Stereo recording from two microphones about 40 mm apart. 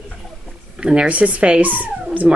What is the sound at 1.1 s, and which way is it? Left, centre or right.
Speech, right.